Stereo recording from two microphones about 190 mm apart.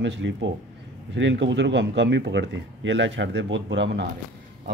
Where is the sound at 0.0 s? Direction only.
70° right (ahead or behind).